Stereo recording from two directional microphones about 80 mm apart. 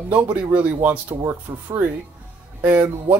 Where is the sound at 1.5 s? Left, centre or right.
Right.